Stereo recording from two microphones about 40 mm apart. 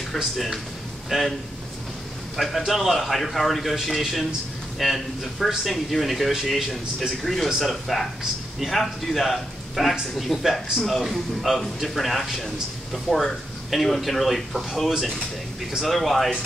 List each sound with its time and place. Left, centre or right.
1.1 s speech: centre
2.3 s a man's voice: centre